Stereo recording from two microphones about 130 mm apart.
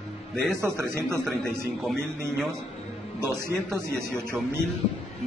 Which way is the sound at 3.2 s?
20° right (ahead or behind).